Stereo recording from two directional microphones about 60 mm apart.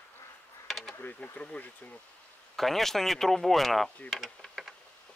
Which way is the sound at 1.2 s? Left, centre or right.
Left.